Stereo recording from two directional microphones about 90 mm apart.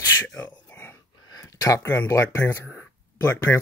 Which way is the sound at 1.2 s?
40° left (ahead or behind).